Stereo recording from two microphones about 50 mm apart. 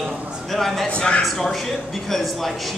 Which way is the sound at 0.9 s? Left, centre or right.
Left.